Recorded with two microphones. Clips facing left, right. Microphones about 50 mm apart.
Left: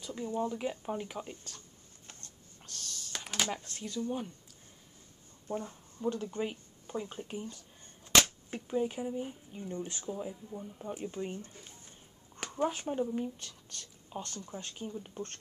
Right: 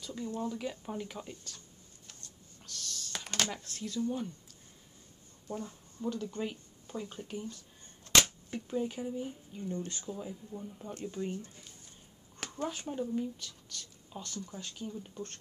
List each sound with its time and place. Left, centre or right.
0.0 s speech: left
2.0 s a sound: left
3.3 s speech: centre
3.5 s speech: centre
4.0 s speech: centre
5.5 s speech: left
8.1 s a sound: centre
8.6 s speech: centre
11.1 s speech: left
14.9 s speech: centre